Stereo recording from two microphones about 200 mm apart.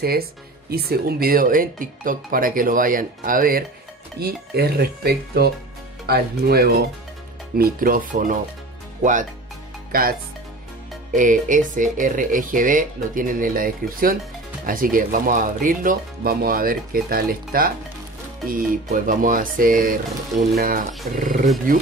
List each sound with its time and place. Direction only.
0.0 s speech: 50° right (ahead or behind)
9.9 s speech: 45° right (ahead or behind)
11.1 s speech: 40° right (ahead or behind)